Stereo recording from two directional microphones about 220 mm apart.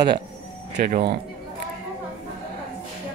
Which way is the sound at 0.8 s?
35° right (ahead or behind).